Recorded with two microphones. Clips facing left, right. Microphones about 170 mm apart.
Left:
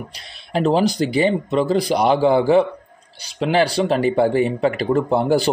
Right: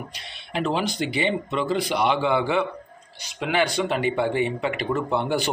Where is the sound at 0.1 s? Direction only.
40° left (ahead or behind).